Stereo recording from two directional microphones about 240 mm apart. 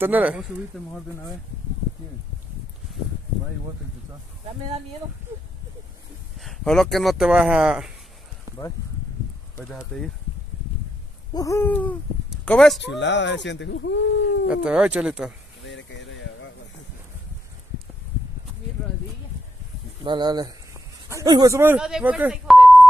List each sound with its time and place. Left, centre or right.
0.0 s speech: centre
6.4 s speech: centre
8.5 s a sound: centre
9.7 s speech: centre
11.3 s owl: centre
12.4 s speech: centre
12.8 s speech: left
14.5 s speech: centre
15.6 s a sound: left
20.0 s speech: centre